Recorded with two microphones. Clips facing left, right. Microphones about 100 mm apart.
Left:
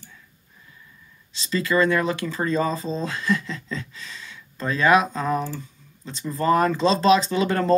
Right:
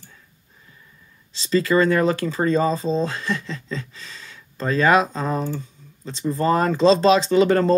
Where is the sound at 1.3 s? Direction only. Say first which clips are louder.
Right 4 dB; 35° right (ahead or behind).